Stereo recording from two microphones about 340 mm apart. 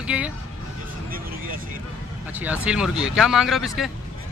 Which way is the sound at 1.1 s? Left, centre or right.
Right.